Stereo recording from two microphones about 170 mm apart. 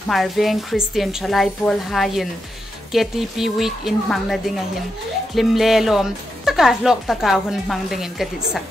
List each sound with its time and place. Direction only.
0.1 s speech: centre (ahead or behind)